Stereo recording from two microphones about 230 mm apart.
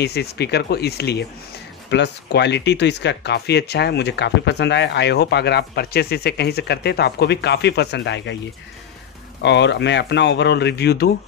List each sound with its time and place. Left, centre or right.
0.0 s speech: left
9.4 s speech: left